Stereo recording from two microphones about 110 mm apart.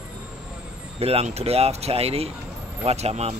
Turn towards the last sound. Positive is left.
turn(degrees=-80)